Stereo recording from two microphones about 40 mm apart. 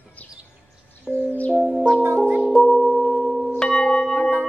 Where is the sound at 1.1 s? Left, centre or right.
Centre.